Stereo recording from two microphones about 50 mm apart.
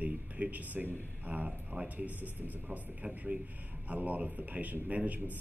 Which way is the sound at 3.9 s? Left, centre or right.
Right.